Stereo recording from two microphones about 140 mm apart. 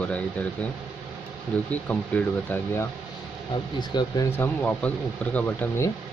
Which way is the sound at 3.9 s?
30° left (ahead or behind).